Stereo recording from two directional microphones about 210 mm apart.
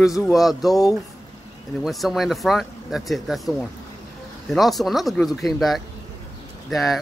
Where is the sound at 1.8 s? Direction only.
Centre (ahead or behind).